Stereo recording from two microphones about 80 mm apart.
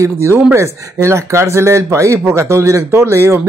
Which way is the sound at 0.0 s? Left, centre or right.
Right.